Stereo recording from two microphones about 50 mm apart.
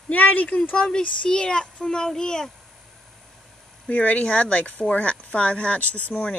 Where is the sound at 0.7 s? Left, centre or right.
Centre.